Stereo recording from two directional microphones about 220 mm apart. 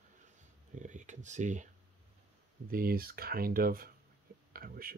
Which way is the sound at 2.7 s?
40° right (ahead or behind).